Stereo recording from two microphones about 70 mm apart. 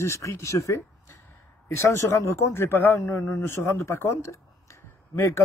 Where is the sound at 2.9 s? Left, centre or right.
Left.